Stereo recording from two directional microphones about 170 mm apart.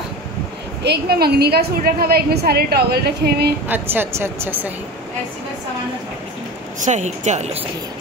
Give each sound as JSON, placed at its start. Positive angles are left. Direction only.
{"t": 0.8, "sound": "a woman's voice", "side_deg": -65}
{"t": 3.6, "sound": "a woman's voice", "side_deg": -10}
{"t": 6.8, "sound": "speech", "side_deg": -45}